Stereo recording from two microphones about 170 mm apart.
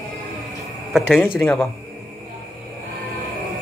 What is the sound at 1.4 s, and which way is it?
Speech, 15° left (ahead or behind).